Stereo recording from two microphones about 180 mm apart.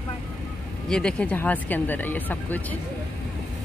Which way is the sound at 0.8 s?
5° left (ahead or behind).